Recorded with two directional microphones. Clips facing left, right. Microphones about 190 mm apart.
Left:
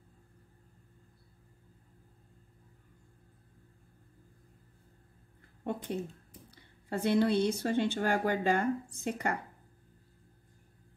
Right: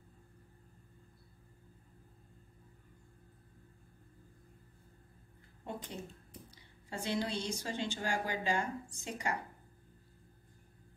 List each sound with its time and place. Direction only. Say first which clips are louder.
5.6 s a woman's voice: left 8 dB; 60° left (ahead or behind)